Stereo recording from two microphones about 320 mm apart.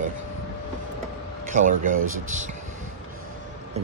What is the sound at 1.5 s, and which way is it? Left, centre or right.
Speech, right.